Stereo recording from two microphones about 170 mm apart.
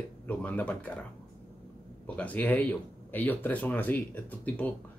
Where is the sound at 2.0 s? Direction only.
10° left (ahead or behind).